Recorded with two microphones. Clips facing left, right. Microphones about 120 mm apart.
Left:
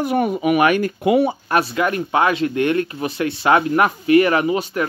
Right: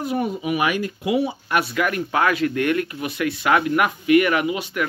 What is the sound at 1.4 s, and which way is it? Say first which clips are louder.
Speech: left 3 dB; 30° left (ahead or behind).